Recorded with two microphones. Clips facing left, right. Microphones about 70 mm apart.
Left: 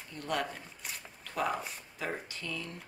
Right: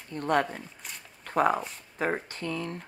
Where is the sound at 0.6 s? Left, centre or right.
Centre.